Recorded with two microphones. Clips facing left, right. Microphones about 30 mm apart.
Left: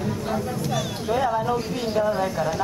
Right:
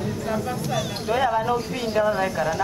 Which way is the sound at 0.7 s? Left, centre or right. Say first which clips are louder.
Right 1 dB; centre.